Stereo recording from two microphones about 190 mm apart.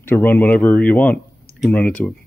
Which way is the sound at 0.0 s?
10° left (ahead or behind).